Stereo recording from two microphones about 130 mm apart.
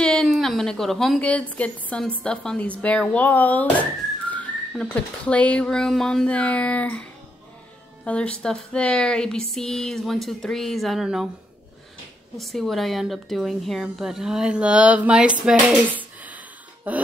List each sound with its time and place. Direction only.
0.0 s a woman's voice: 5° left (ahead or behind)
12.4 s a woman's voice: centre (ahead or behind)
16.2 s a sound: 10° right (ahead or behind)